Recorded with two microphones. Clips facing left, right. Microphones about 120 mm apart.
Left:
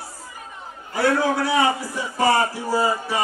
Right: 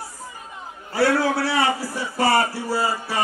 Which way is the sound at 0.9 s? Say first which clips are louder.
Even; 15° left (ahead or behind).